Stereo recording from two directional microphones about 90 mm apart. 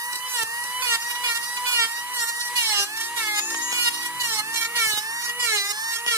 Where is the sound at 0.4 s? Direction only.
30° right (ahead or behind).